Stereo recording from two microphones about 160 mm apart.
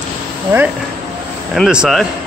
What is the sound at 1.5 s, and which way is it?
Speech, 5° right (ahead or behind).